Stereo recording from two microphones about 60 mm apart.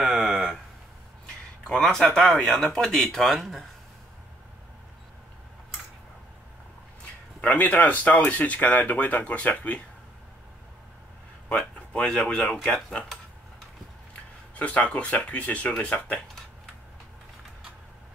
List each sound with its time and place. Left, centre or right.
0.0 s a sound: centre
1.2 s a sound: centre
1.9 s speech: centre
7.4 s speech: left
11.5 s speech: centre
14.5 s speech: left